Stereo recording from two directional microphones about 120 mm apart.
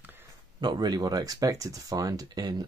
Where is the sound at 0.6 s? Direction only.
35° right (ahead or behind).